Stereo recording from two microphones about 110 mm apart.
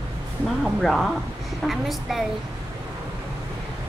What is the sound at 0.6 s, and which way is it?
Speech, centre (ahead or behind).